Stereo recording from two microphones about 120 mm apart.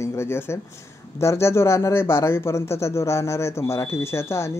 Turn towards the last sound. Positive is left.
turn(degrees=25)  # may be behind; listen again after turning